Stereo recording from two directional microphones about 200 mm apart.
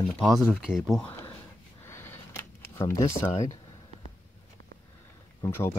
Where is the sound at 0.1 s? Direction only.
Centre (ahead or behind).